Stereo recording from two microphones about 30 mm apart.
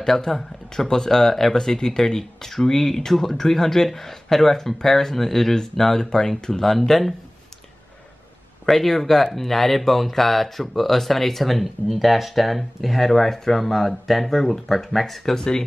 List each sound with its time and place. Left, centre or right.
0.0 s speech: centre
6.7 s speech: centre
8.6 s speech: centre
15.3 s speech: left